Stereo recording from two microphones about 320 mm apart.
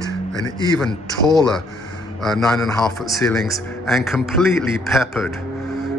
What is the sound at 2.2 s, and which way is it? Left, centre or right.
A man's voice, centre.